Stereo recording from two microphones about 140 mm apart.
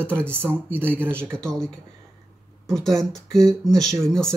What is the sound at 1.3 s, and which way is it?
Speech, 5° left (ahead or behind).